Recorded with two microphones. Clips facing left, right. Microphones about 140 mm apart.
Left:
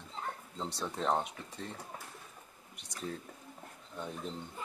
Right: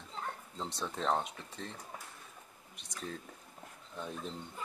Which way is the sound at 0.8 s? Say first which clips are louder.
Left 1 dB; 15° left (ahead or behind).